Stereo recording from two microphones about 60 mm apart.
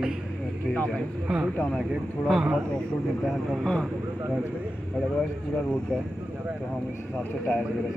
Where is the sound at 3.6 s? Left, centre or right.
Centre.